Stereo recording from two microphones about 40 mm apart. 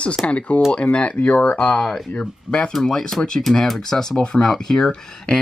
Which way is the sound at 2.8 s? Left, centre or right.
Centre.